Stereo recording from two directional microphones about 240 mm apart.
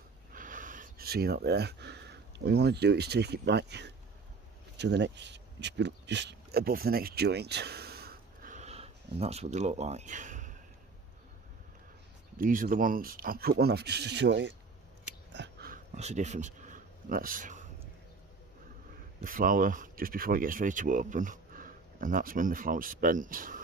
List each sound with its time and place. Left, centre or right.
0.3 s speech: right
12.4 s speech: right
15.3 s a sound: right
19.2 s speech: right